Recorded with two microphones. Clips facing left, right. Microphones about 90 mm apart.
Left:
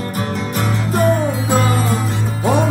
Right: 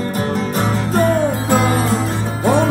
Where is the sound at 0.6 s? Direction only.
35° right (ahead or behind).